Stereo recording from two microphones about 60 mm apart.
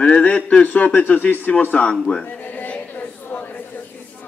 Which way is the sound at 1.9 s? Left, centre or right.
Centre.